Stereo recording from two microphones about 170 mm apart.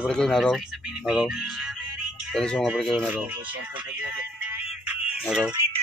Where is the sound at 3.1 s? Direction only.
10° right (ahead or behind).